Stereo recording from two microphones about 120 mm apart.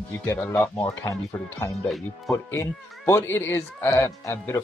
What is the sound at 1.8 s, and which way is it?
Speech, 5° left (ahead or behind).